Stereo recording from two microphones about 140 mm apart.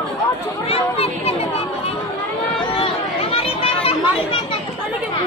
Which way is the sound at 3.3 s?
45° left (ahead or behind).